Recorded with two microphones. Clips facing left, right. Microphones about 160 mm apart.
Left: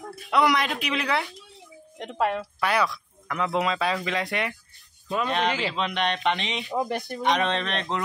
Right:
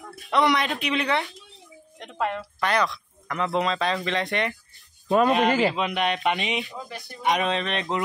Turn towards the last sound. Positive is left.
turn(degrees=0)  # may be behind; listen again after turning